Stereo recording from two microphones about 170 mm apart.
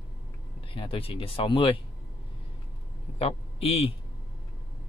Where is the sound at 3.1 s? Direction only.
35° left (ahead or behind).